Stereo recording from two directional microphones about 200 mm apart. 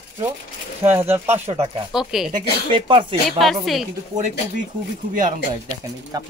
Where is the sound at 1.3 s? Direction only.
30° right (ahead or behind).